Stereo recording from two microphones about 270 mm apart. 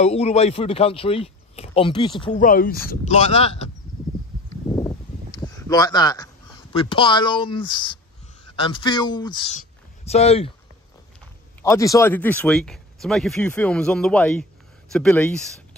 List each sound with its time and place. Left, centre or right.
0.0 s speech: left
2.4 s speech: left
5.6 s speech: centre
9.6 s a sound: left
11.6 s speech: centre